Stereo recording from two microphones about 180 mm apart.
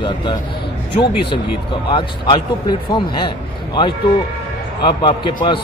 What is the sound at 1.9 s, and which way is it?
A man's voice, 25° left (ahead or behind).